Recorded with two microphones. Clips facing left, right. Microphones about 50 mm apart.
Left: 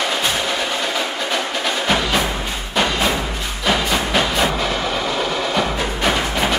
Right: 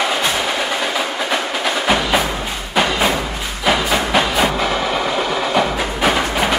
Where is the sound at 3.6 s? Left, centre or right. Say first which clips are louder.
Right 2 dB; centre.